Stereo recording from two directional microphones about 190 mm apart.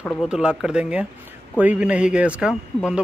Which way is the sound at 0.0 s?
Centre (ahead or behind).